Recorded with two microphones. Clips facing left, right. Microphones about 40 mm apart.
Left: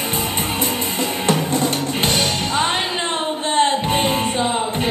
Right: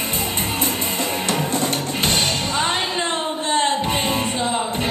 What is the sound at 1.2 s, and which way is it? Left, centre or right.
Music, left.